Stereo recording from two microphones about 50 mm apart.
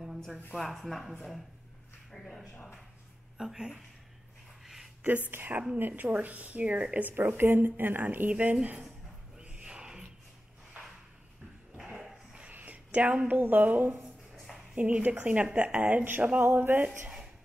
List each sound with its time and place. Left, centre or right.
0.6 s speech: centre
3.3 s speech: centre
5.0 s speech: right
7.2 s a woman's voice: right
8.3 s speech: right
9.4 s a sound: right
11.7 s a sound: centre
12.4 s speech: right
14.3 s a sound: centre
14.8 s a woman's voice: right